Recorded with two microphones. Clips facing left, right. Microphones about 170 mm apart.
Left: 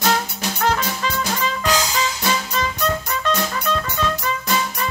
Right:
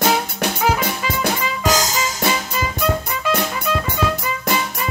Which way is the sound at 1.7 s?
45° right (ahead or behind).